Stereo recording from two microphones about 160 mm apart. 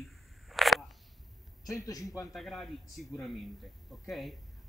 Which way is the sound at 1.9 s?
20° left (ahead or behind).